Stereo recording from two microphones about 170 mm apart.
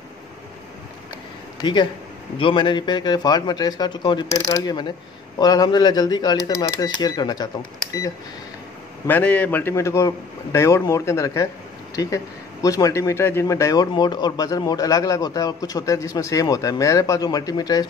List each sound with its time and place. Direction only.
1.6 s speech: 25° left (ahead or behind)
9.0 s a man's voice: 10° left (ahead or behind)